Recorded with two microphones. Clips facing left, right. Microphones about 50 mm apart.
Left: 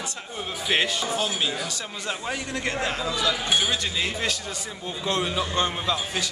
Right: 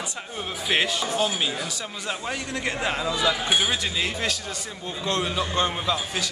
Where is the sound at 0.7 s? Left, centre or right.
Centre.